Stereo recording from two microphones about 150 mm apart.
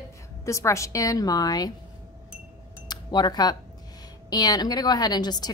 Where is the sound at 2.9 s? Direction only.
30° left (ahead or behind).